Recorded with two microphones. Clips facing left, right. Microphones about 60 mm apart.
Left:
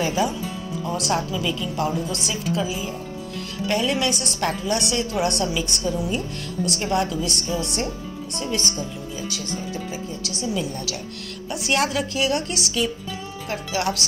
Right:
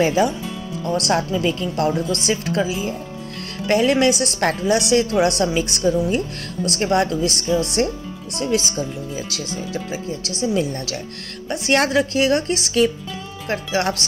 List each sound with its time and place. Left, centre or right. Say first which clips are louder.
0.0 s speech: right 5 dB; right
5.2 s speech: right 5 dB; right
6.1 s speech: right 3 dB; right
8.4 s speech: right 6 dB; right
10.2 s a woman's voice: right 6 dB; right